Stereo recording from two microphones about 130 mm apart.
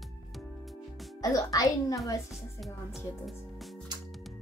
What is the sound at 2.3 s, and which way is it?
Speech, centre (ahead or behind).